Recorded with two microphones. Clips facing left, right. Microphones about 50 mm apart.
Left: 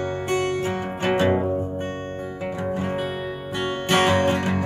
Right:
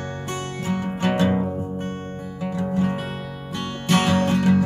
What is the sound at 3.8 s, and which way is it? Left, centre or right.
Music, left.